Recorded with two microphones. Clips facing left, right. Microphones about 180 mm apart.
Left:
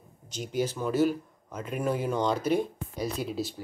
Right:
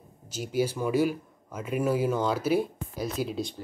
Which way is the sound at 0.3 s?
5° right (ahead or behind).